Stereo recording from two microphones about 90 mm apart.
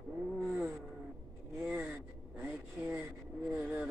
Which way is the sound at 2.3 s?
15° right (ahead or behind).